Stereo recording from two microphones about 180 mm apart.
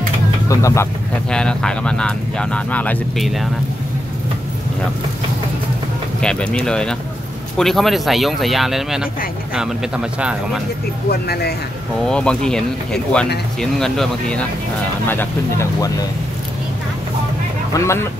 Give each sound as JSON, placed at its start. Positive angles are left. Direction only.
{"t": 0.5, "sound": "speech", "side_deg": 15}
{"t": 1.3, "sound": "speech", "side_deg": 5}
{"t": 6.2, "sound": "speech", "side_deg": 5}
{"t": 11.1, "sound": "speech", "side_deg": 60}
{"t": 12.1, "sound": "speech", "side_deg": 5}
{"t": 15.0, "sound": "speech", "side_deg": 15}
{"t": 17.7, "sound": "speech", "side_deg": 20}